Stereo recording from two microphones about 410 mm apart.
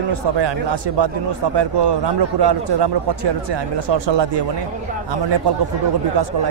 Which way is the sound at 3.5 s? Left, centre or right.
Right.